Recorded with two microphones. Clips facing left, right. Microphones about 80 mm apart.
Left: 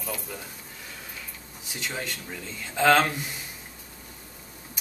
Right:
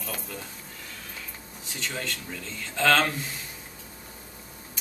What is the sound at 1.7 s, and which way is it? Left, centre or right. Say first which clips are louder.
A man's voice: even; centre.